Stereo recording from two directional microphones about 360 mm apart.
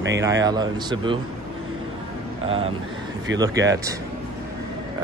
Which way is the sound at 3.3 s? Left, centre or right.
Centre.